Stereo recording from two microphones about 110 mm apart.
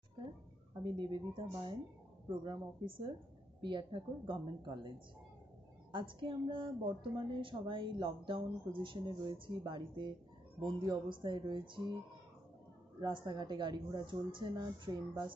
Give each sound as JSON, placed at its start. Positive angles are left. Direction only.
{"t": 0.8, "sound": "a woman's voice", "side_deg": -40}
{"t": 13.0, "sound": "speech", "side_deg": -40}